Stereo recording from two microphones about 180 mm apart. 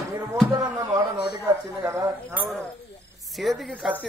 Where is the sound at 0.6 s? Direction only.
20° right (ahead or behind).